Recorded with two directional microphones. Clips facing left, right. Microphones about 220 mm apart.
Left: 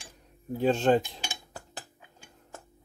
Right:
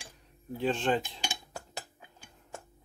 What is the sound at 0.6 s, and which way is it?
Speech, 45° left (ahead or behind).